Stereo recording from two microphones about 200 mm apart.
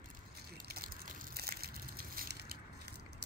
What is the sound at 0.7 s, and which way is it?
Crushing, 50° right (ahead or behind).